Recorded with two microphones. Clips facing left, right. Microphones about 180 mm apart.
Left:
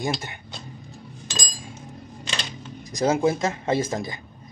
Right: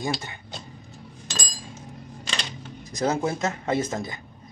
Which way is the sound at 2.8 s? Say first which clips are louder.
Left 4 dB; 15° left (ahead or behind).